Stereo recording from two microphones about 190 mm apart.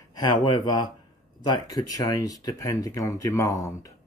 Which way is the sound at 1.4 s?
20° left (ahead or behind).